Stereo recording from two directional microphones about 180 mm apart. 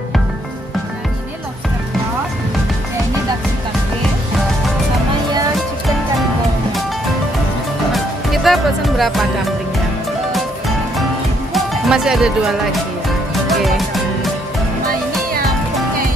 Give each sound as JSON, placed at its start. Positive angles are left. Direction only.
{"t": 7.9, "sound": "music", "side_deg": 0}
{"t": 11.5, "sound": "speech", "side_deg": 0}
{"t": 13.3, "sound": "music", "side_deg": 0}